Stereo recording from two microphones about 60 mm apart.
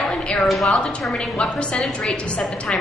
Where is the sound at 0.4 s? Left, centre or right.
Centre.